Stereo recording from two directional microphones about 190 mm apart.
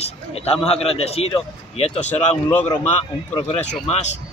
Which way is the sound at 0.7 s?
30° left (ahead or behind).